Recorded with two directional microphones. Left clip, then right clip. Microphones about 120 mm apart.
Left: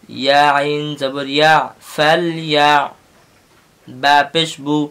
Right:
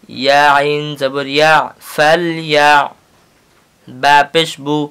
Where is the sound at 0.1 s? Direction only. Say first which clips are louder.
Right 3 dB; 35° right (ahead or behind).